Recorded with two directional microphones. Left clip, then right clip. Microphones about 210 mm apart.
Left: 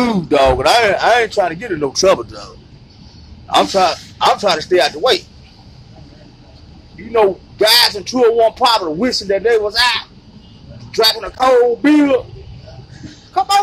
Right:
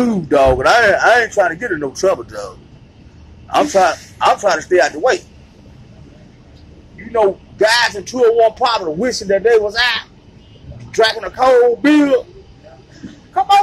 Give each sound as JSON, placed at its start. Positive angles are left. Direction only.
{"t": 0.3, "sound": "speech", "side_deg": 20}
{"t": 2.2, "sound": "a man's voice", "side_deg": 0}
{"t": 3.4, "sound": "speech", "side_deg": 15}
{"t": 7.1, "sound": "a man's voice", "side_deg": 25}
{"t": 13.3, "sound": "speech", "side_deg": 25}